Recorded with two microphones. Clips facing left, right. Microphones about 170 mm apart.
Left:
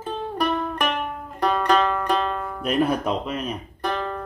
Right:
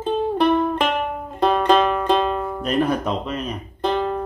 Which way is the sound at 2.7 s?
10° left (ahead or behind).